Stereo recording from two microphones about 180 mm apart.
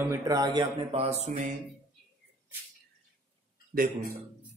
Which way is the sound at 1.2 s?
45° right (ahead or behind).